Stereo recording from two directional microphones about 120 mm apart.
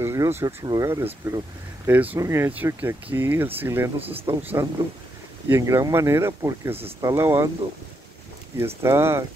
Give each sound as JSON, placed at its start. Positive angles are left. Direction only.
{"t": 0.0, "sound": "speech", "side_deg": -25}
{"t": 1.9, "sound": "speech", "side_deg": -15}
{"t": 8.5, "sound": "speech", "side_deg": -20}